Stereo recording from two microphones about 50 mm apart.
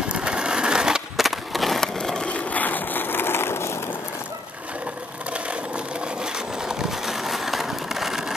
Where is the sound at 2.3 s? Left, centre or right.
Left.